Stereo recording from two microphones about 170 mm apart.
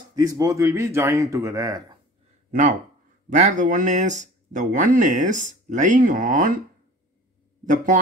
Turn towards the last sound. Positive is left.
turn(degrees=-50)  # may be behind; listen again after turning